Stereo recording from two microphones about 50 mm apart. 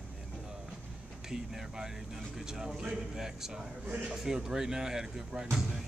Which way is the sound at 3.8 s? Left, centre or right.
Right.